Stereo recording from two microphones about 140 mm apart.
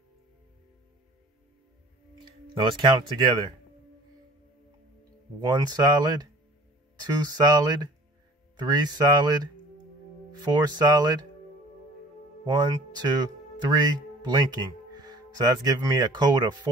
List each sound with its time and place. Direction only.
2.1 s speech: 35° right (ahead or behind)
5.5 s speech: 30° right (ahead or behind)
12.5 s speech: 30° right (ahead or behind)